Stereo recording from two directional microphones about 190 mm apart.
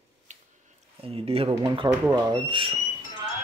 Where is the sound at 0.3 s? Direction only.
40° right (ahead or behind).